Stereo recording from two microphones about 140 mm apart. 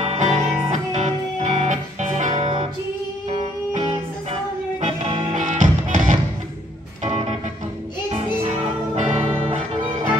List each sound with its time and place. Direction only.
0.0 s music: 50° right (ahead or behind)
4.7 s music: 50° right (ahead or behind)
7.0 s music: 55° right (ahead or behind)
8.5 s music: 55° right (ahead or behind)